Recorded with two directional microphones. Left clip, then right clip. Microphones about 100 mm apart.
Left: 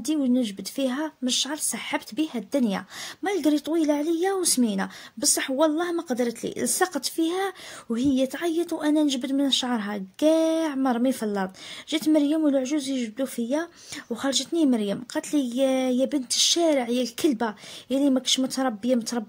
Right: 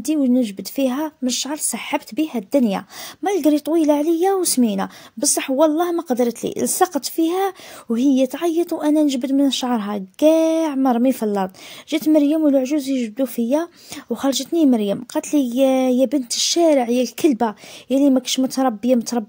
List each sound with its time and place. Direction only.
0.0 s a woman's voice: 40° right (ahead or behind)